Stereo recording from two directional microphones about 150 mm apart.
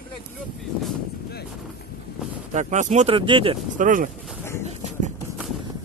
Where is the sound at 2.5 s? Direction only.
50° right (ahead or behind).